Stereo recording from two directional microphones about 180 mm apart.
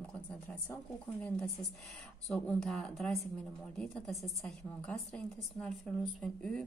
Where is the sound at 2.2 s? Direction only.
5° left (ahead or behind).